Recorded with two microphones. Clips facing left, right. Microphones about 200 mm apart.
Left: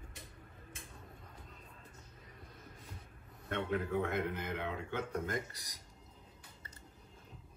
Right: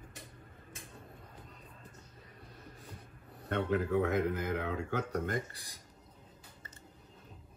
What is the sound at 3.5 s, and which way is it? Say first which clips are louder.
A man's voice: right 4 dB; 40° right (ahead or behind).